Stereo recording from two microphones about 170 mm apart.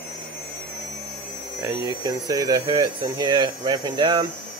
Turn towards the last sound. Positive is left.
turn(degrees=-30)  # may be behind; listen again after turning